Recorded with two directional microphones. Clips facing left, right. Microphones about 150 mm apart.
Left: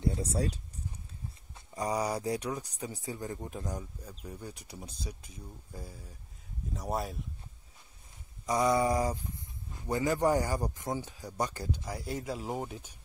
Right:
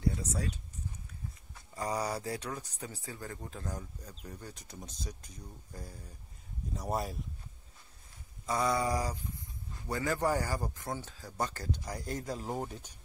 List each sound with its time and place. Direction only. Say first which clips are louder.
0.0 s speech: left 3 dB; 30° left (ahead or behind)
1.5 s speech: left 3 dB; 15° left (ahead or behind)
8.5 s a sound: left 4 dB; 20° left (ahead or behind)
9.7 s speech: left 4 dB; 20° left (ahead or behind)
11.8 s speech: left 1 dB; centre (ahead or behind)